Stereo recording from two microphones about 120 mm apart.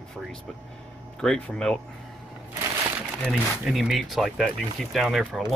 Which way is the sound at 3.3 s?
Centre (ahead or behind).